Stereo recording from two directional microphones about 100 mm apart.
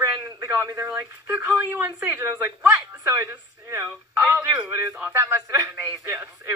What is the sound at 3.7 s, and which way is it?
Speech, 25° right (ahead or behind).